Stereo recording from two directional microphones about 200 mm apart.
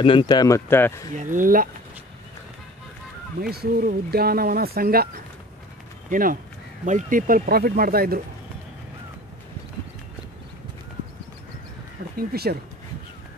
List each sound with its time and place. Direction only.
0.0 s speech: 25° left (ahead or behind)
1.1 s speech: 40° right (ahead or behind)
3.3 s speech: 50° right (ahead or behind)
12.2 s speech: 50° right (ahead or behind)